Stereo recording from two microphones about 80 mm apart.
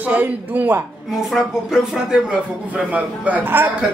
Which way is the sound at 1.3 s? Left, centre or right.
Centre.